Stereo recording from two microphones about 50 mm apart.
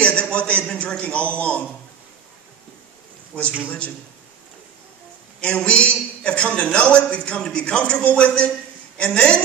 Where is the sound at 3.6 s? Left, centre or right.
Left.